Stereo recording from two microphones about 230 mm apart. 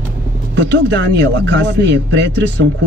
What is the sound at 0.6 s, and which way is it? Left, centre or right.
Speech, right.